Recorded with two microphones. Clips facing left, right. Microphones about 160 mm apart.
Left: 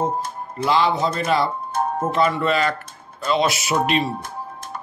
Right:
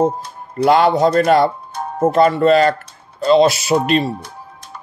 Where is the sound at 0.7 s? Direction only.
60° right (ahead or behind).